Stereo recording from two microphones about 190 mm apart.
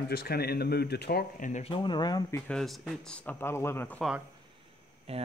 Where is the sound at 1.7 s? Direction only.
25° left (ahead or behind).